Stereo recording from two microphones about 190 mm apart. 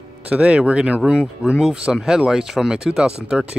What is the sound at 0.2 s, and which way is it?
Speech, 5° right (ahead or behind).